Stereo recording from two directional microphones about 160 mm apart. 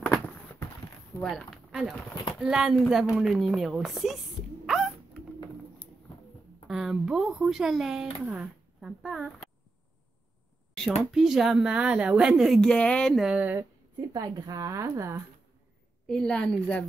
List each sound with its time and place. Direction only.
1.2 s speech: centre (ahead or behind)
4.6 s a sound: centre (ahead or behind)
6.7 s speech: centre (ahead or behind)
11.1 s speech: centre (ahead or behind)
14.1 s a woman's voice: 25° right (ahead or behind)
16.1 s speech: 5° left (ahead or behind)